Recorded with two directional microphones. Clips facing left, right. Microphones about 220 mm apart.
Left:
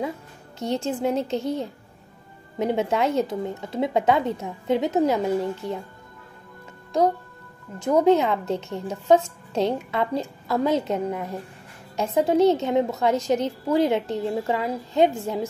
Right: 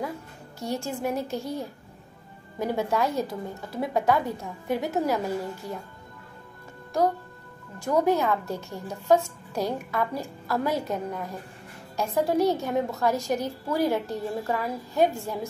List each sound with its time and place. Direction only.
0.6 s a woman's voice: 20° left (ahead or behind)
7.8 s a woman's voice: 20° left (ahead or behind)